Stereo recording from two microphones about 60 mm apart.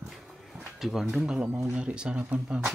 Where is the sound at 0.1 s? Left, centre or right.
Centre.